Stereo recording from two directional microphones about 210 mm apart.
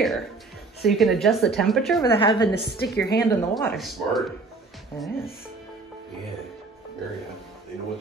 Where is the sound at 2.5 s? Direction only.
50° left (ahead or behind).